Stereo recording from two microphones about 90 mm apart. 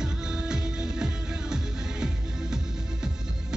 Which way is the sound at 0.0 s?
5° right (ahead or behind).